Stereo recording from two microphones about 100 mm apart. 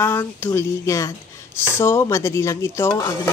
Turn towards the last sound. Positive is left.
turn(degrees=30)  # may be behind; listen again after turning